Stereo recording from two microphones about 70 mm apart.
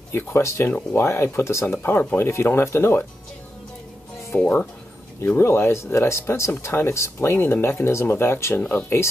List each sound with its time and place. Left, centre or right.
0.1 s speech: left
4.4 s speech: left
5.4 s speech: left
7.3 s speech: left
7.6 s speech: left